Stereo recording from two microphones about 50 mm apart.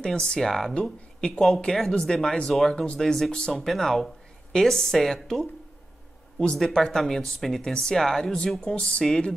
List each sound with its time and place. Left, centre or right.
0.0 s speech: centre
0.5 s speech: centre